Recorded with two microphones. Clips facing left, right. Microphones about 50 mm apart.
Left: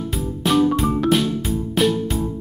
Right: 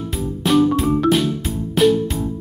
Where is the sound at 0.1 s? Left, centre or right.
Centre.